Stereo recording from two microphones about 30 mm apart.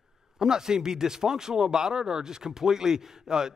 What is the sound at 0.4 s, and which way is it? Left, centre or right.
Speech, centre.